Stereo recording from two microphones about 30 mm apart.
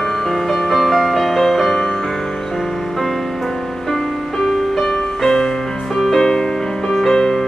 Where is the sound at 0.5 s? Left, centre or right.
Centre.